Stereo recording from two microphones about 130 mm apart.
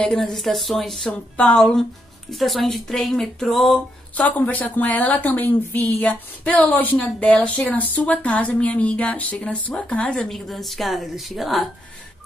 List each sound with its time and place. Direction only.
0.0 s a woman's voice: 5° left (ahead or behind)
4.2 s speech: 10° left (ahead or behind)